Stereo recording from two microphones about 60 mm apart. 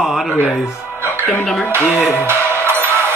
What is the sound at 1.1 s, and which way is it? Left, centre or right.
Music, left.